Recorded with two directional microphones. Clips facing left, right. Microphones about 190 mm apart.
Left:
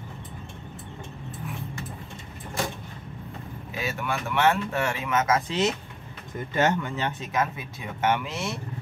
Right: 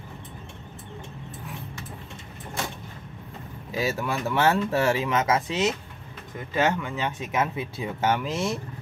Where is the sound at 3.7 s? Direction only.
35° right (ahead or behind).